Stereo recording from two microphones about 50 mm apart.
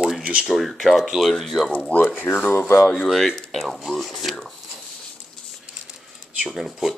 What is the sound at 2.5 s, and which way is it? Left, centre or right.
Speech, left.